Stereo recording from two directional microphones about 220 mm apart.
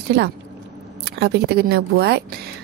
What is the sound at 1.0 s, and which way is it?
Speech, 50° right (ahead or behind).